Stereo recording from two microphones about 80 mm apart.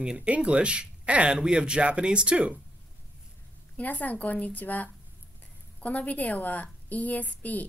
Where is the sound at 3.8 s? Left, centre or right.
Centre.